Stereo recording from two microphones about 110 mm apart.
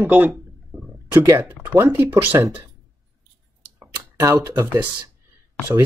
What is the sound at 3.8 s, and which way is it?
Speech, 30° right (ahead or behind).